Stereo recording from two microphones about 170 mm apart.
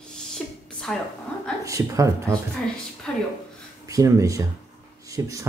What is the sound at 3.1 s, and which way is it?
Speech, 5° left (ahead or behind).